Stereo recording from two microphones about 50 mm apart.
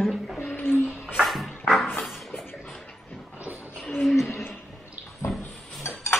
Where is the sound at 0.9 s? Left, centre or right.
Right.